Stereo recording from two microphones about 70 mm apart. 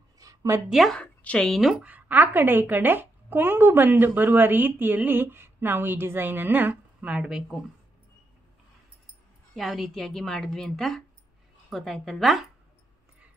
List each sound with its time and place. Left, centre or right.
0.2 s a sound: right
0.7 s a woman's voice: centre
0.9 s a woman's voice: centre
1.5 s a woman's voice: centre
1.8 s a woman's voice: right
7.1 s speech: centre
9.6 s a woman's voice: centre